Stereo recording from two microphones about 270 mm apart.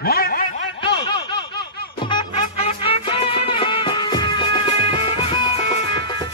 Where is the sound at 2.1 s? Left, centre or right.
Centre.